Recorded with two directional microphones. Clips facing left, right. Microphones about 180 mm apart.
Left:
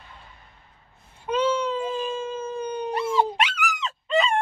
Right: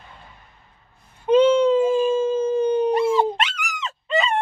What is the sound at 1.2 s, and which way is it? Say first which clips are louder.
Howl: right 9 dB; 25° right (ahead or behind).